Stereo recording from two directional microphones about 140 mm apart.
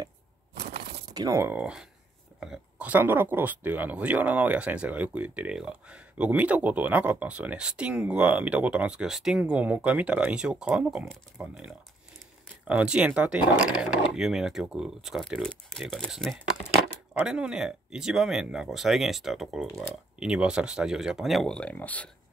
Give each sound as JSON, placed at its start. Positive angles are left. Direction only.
{"t": 1.1, "sound": "speech", "side_deg": -25}